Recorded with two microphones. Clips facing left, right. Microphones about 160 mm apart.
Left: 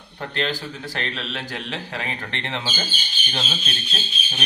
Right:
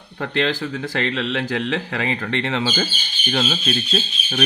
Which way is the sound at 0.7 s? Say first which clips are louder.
Right 7 dB; 90° right.